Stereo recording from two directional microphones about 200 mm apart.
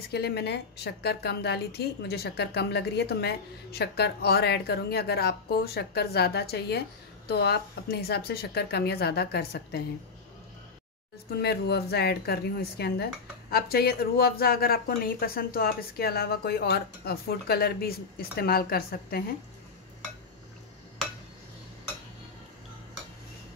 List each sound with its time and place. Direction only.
0.1 s a woman's voice: 55° left (ahead or behind)
11.2 s a woman's voice: 55° left (ahead or behind)